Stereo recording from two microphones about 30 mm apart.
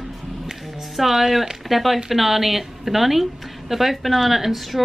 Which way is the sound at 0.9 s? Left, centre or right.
Centre.